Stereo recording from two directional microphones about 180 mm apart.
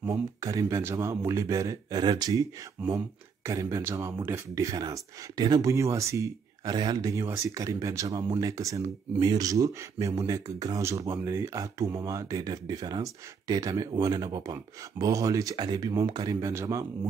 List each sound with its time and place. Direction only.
0.0 s speech: 20° right (ahead or behind)
2.8 s speech: 5° right (ahead or behind)
3.4 s speech: 15° right (ahead or behind)